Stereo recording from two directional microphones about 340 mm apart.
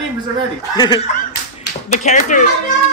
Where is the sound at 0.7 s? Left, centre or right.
Centre.